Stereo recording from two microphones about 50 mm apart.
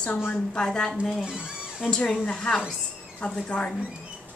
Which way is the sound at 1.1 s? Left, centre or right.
Centre.